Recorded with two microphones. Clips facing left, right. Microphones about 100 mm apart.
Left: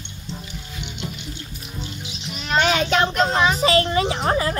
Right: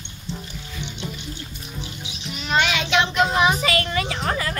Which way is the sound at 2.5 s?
40° left (ahead or behind).